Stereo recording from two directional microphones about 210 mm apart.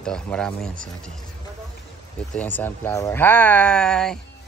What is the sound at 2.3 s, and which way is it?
Speech, 10° left (ahead or behind).